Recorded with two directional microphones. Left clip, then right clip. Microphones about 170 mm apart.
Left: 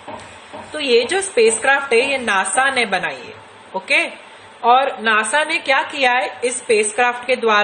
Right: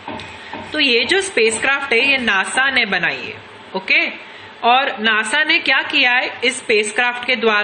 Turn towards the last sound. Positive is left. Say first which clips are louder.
# even
turn(degrees=10)  # may be behind; listen again after turning